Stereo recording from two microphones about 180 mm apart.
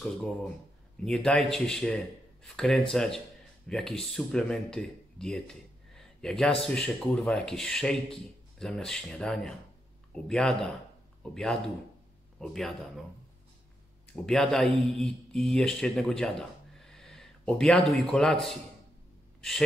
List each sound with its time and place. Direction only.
0.0 s speech: 5° left (ahead or behind)
12.4 s speech: centre (ahead or behind)
14.1 s speech: 5° left (ahead or behind)